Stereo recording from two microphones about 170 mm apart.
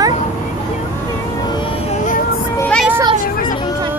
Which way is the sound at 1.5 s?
30° left (ahead or behind).